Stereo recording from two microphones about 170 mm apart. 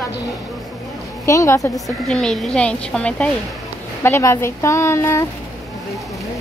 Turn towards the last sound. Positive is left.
turn(degrees=15)  # may be behind; listen again after turning